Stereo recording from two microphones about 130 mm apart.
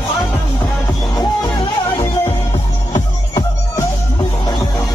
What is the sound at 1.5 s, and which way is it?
Music, 40° left (ahead or behind).